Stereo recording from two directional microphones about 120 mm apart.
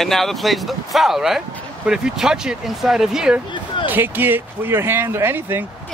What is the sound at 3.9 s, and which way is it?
Speech, 15° right (ahead or behind).